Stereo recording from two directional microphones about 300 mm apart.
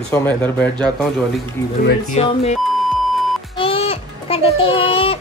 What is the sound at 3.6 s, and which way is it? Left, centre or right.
Child singing, centre.